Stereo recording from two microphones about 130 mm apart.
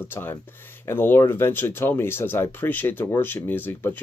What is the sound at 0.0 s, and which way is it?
Speech, 15° left (ahead or behind).